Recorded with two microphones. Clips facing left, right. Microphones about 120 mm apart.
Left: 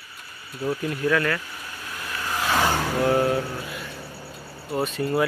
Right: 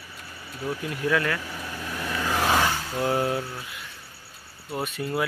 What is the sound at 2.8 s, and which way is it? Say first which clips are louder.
Vehicle: left 4 dB; 75° left (ahead or behind).